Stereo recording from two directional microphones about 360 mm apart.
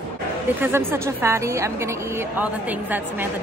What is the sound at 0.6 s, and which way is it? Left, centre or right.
A woman's voice, centre.